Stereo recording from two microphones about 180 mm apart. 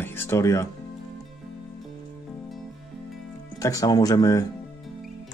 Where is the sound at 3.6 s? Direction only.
20° left (ahead or behind).